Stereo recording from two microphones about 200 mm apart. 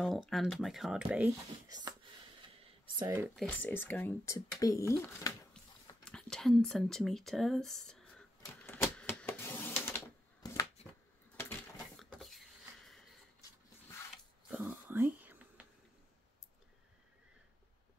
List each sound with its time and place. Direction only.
0.3 s speech: centre (ahead or behind)
1.7 s a sound: 20° right (ahead or behind)
3.0 s speech: 10° right (ahead or behind)
3.3 s speech: 10° left (ahead or behind)
6.0 s speech: 5° left (ahead or behind)
8.8 s typewriter: 5° left (ahead or behind)
12.0 s a sound: centre (ahead or behind)
14.5 s whispering: 10° right (ahead or behind)